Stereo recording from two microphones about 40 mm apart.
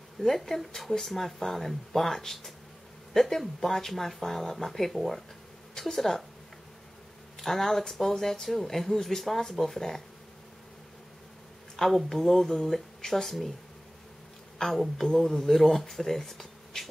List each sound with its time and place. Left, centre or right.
0.2 s speech: centre
7.3 s speech: centre
11.7 s speech: centre
14.6 s a woman's voice: centre
15.1 s speech: centre